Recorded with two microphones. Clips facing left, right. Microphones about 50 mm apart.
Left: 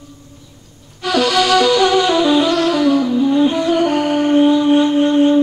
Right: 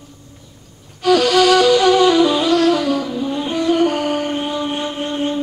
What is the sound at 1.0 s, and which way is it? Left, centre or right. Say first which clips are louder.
Flute: right 2 dB; left.